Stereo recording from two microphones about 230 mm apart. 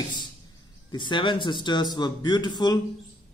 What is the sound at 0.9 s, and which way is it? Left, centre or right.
A man's voice, centre.